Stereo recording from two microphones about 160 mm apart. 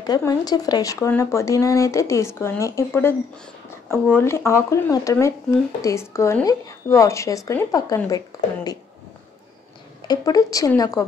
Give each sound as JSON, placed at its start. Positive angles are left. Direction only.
{"t": 0.0, "sound": "speech", "side_deg": 25}
{"t": 8.3, "sound": "a sound", "side_deg": 20}
{"t": 10.0, "sound": "speech", "side_deg": 25}